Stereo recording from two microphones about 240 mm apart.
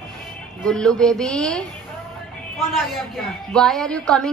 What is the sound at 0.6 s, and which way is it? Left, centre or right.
Speech, centre.